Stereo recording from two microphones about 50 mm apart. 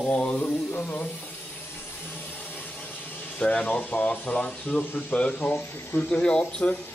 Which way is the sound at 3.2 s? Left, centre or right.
Left.